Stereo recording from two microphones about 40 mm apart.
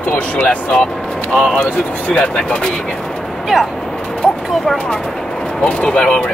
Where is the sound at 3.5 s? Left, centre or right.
Centre.